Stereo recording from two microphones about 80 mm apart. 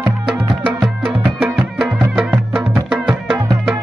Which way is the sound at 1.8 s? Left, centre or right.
Centre.